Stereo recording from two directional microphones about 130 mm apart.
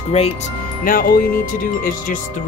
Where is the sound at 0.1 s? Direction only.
50° left (ahead or behind).